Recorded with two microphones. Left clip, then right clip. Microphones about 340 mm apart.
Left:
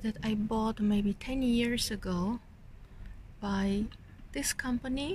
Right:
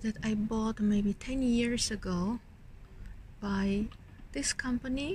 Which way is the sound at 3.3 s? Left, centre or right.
Centre.